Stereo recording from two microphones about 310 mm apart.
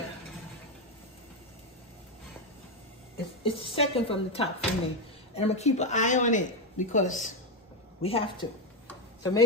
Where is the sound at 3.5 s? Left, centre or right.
Centre.